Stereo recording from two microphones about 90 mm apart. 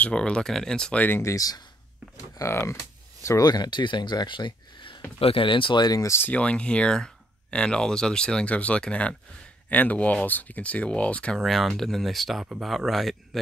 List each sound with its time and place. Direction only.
0.0 s speech: 10° left (ahead or behind)
1.0 s speech: 25° left (ahead or behind)
1.3 s speech: 45° left (ahead or behind)
2.3 s speech: 30° left (ahead or behind)
3.4 s speech: 50° left (ahead or behind)
5.2 s speech: 80° left; by 6.0 s 50° left (ahead or behind)
6.0 s speech: 25° left (ahead or behind)
6.3 s speech: 15° left (ahead or behind)
11.3 s speech: centre (ahead or behind)